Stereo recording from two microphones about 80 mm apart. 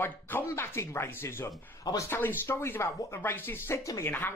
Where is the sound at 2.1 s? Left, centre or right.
Left.